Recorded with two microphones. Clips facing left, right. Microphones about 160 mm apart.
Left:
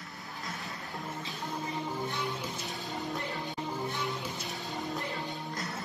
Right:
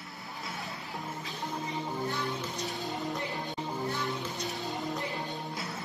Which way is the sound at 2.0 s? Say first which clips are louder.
Right 1 dB; 20° left (ahead or behind).